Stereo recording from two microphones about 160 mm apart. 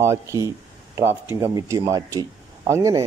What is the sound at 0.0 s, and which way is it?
A man's voice, 20° right (ahead or behind).